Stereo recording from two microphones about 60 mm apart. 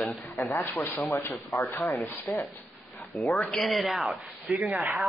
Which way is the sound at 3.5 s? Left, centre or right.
Centre.